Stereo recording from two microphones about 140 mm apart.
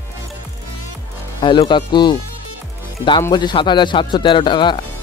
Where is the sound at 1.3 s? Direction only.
35° left (ahead or behind).